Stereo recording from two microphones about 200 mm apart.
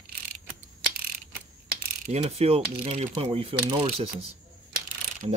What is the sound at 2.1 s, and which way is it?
Speech, 30° right (ahead or behind).